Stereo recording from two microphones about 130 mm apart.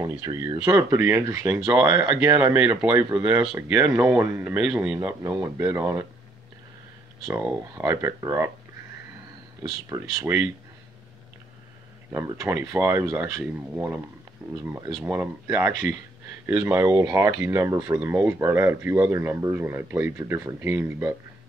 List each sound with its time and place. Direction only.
0.0 s speech: 25° right (ahead or behind); by 3.8 s 10° right (ahead or behind)
4.2 s speech: 20° right (ahead or behind)
7.2 s speech: 20° right (ahead or behind)
9.6 s speech: 25° right (ahead or behind)
12.1 s speech: 20° right (ahead or behind)